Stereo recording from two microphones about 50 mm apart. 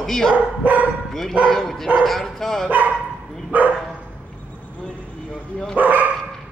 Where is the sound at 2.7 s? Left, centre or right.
Right.